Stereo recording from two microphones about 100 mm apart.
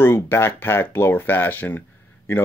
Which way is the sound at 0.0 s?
25° left (ahead or behind).